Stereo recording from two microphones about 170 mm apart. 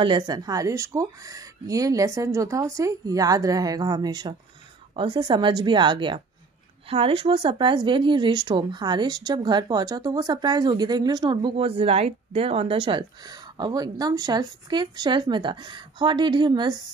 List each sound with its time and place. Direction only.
0.0 s speech: 25° right (ahead or behind)